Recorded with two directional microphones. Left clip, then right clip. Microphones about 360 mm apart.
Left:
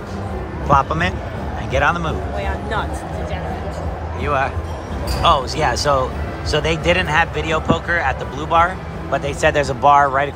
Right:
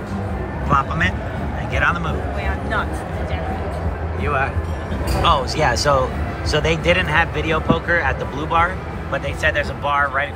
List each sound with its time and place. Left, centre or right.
0.7 s a man's voice: centre
2.4 s speech: left
4.2 s speech: centre